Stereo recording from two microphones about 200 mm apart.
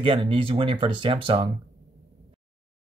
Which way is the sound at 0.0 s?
25° right (ahead or behind).